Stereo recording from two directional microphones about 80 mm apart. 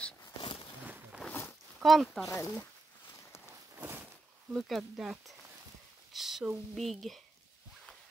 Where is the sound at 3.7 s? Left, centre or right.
Right.